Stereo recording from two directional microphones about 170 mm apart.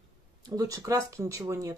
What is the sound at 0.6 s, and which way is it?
Speech, 20° right (ahead or behind).